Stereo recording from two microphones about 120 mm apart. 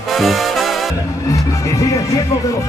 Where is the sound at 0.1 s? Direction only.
Centre (ahead or behind).